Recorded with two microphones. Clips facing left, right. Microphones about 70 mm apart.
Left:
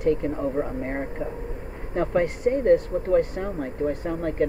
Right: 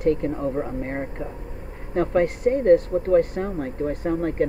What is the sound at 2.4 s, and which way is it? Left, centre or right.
Speech, centre.